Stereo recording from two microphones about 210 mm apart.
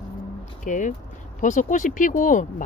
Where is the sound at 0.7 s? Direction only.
35° left (ahead or behind).